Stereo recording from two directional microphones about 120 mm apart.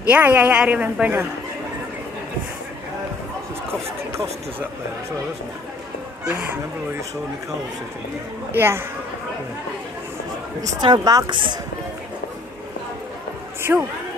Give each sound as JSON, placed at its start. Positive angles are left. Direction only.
{"t": 0.0, "sound": "a woman's voice", "side_deg": -15}
{"t": 6.2, "sound": "a woman's voice", "side_deg": -20}
{"t": 8.5, "sound": "a woman's voice", "side_deg": -20}
{"t": 10.6, "sound": "speech", "side_deg": -35}
{"t": 13.6, "sound": "a sound", "side_deg": -20}